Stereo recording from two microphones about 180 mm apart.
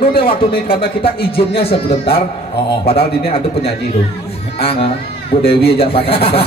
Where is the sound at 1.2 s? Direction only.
30° left (ahead or behind).